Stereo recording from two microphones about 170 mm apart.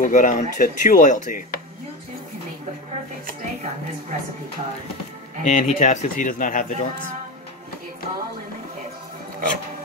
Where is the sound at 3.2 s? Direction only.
45° right (ahead or behind).